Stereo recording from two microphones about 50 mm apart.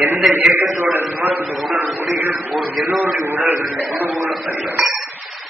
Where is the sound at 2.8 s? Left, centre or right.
Centre.